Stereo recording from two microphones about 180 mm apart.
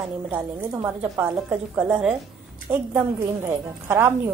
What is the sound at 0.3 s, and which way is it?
A woman's voice, 10° right (ahead or behind).